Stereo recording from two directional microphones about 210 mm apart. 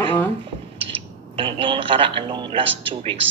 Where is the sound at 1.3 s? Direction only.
25° right (ahead or behind).